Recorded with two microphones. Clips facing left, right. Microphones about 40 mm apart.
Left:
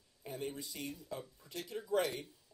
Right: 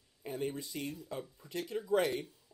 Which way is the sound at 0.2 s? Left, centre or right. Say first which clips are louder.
Right 4 dB; right.